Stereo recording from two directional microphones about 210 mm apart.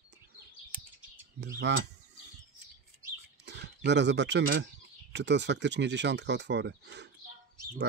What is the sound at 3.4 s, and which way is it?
Speech, 55° right (ahead or behind).